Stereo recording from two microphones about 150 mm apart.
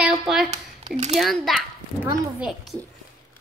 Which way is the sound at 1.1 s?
Centre (ahead or behind).